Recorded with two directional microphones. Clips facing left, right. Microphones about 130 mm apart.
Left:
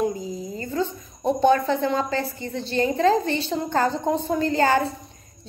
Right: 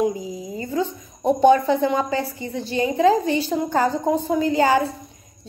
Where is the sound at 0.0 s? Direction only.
10° right (ahead or behind).